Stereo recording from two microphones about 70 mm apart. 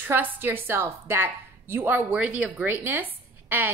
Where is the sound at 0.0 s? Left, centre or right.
Right.